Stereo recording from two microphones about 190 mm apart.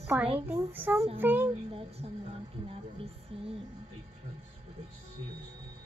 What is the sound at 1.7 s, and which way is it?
Speech, 30° right (ahead or behind).